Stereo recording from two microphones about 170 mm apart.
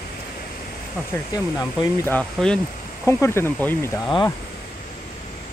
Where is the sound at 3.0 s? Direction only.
15° left (ahead or behind).